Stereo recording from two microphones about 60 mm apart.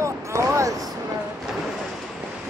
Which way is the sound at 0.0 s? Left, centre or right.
Right.